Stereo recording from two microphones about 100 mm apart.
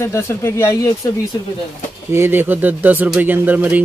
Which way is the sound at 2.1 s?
20° right (ahead or behind).